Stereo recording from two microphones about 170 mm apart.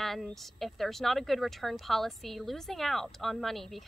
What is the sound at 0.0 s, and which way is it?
A woman's voice, centre (ahead or behind).